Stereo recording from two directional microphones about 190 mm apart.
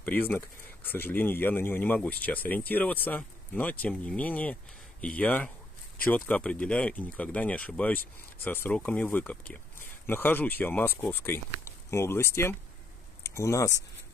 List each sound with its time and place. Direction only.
0.1 s speech: 10° left (ahead or behind)